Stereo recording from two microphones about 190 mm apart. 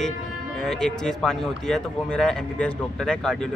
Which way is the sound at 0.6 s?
5° left (ahead or behind).